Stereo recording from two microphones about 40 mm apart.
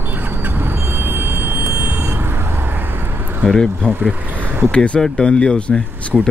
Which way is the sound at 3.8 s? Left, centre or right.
Left.